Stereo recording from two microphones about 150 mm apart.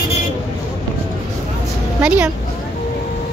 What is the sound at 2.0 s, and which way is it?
Speech, 5° right (ahead or behind).